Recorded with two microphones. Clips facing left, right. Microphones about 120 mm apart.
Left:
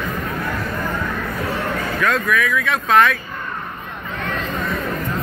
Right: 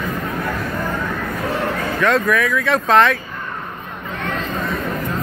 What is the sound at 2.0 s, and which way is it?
Speech, 30° right (ahead or behind).